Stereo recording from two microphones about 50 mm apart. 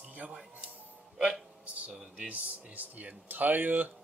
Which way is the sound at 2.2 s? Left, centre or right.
Right.